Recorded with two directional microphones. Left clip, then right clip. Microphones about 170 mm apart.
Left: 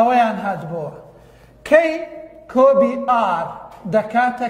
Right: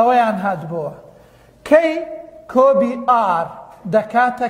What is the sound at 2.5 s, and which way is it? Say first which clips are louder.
A man's voice: even; 30° right (ahead or behind).